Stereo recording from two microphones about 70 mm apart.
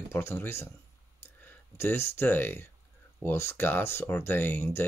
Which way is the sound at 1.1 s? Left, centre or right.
Left.